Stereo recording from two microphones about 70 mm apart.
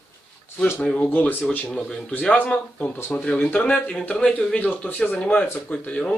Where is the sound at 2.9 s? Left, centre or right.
Left.